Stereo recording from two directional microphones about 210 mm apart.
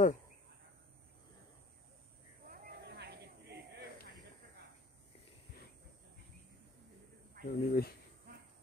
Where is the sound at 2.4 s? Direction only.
50° right (ahead or behind).